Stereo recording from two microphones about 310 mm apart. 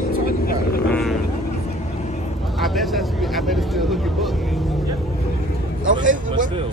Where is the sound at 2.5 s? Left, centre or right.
Centre.